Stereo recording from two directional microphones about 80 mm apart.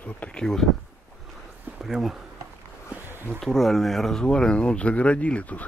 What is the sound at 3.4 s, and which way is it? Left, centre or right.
Speech, centre.